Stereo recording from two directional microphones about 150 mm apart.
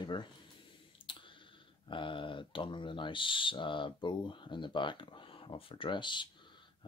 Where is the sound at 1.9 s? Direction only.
35° left (ahead or behind).